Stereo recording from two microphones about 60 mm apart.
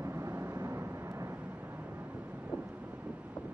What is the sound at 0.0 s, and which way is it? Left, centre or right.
Vehicle, right.